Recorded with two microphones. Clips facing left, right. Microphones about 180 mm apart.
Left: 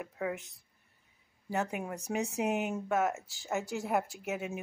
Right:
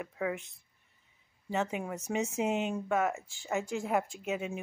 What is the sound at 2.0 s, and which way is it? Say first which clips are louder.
Speech: right 1 dB; 15° left (ahead or behind).